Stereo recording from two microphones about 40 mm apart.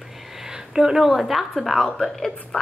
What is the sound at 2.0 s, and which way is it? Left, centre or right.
Speech, centre.